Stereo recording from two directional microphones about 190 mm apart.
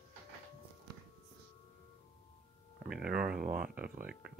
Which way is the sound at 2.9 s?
5° right (ahead or behind).